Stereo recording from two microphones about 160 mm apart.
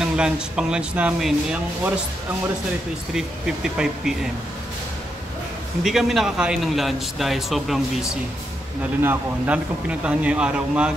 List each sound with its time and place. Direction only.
0.0 s a man's voice: 5° right (ahead or behind)
3.2 s a man's voice: 5° right (ahead or behind)
5.9 s a man's voice: centre (ahead or behind)